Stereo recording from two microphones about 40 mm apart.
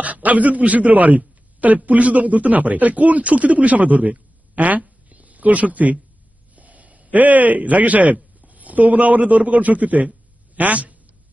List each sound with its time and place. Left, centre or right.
0.0 s a man's voice: right
5.1 s a sound: right
6.5 s a man's voice: right